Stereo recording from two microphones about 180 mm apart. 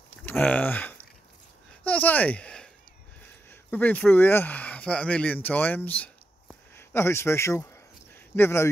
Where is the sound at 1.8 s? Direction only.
10° left (ahead or behind).